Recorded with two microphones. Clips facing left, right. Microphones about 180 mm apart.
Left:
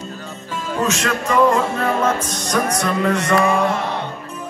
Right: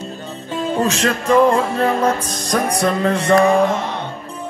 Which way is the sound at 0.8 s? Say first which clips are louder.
Right 1 dB; 35° right (ahead or behind).